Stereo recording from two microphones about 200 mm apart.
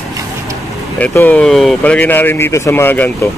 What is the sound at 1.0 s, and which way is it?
Speech, 10° left (ahead or behind).